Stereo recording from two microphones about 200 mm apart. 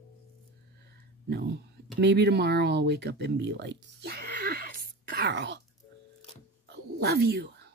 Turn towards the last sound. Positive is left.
turn(degrees=-50)  # may be behind; listen again after turning